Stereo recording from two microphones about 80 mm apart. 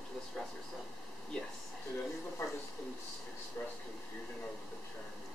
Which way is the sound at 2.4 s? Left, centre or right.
Left.